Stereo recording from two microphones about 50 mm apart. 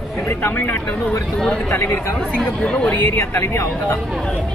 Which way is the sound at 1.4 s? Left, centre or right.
Centre.